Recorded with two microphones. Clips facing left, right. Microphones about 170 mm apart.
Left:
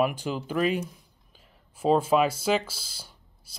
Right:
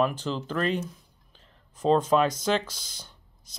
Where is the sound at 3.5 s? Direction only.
10° left (ahead or behind).